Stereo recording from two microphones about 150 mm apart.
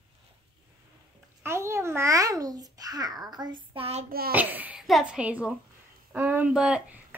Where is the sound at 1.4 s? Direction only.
20° right (ahead or behind); by 4.0 s 40° right (ahead or behind).